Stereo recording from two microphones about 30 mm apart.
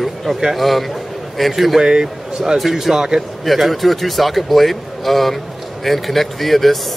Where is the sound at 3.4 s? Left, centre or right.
Centre.